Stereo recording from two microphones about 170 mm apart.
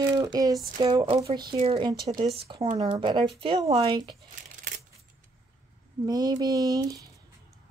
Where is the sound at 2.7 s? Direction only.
30° right (ahead or behind).